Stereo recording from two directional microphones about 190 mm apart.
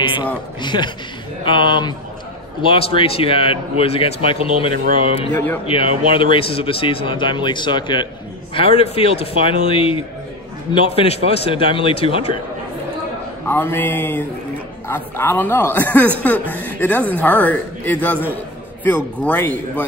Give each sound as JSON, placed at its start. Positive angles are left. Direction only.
{"t": 0.0, "sound": "a sound", "side_deg": 25}
{"t": 0.6, "sound": "a man's voice", "side_deg": 25}
{"t": 4.7, "sound": "speech", "side_deg": -50}
{"t": 5.3, "sound": "a woman's voice", "side_deg": 10}
{"t": 5.7, "sound": "a man's voice", "side_deg": 30}
{"t": 13.5, "sound": "a woman's voice", "side_deg": 10}